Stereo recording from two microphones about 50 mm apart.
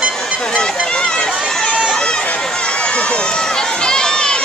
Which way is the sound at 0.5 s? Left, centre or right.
Centre.